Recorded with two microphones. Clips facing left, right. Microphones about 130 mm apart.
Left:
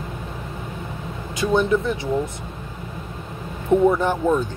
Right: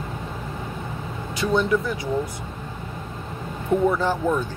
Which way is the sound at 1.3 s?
20° left (ahead or behind).